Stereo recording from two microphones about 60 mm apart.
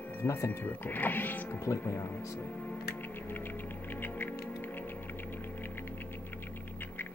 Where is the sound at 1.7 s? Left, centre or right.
Left.